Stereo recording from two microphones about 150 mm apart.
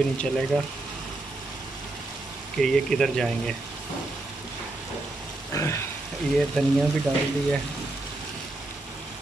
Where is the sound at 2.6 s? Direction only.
5° left (ahead or behind).